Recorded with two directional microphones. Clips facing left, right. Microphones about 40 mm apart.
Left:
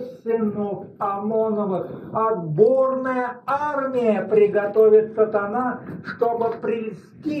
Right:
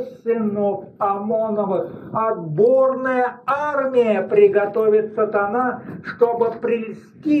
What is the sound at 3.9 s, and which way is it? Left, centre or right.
Speech, right.